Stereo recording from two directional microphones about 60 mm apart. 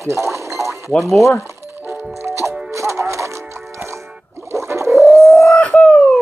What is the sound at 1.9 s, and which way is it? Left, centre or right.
Music, right.